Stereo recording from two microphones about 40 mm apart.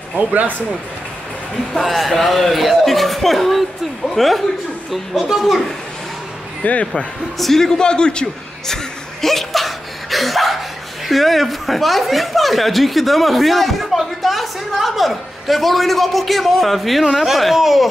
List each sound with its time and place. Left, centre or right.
0.2 s speech: right
1.8 s speech: centre
6.6 s speech: left
7.3 s a man's voice: centre; by 8.3 s left
9.2 s a sound: centre
11.1 s speech: centre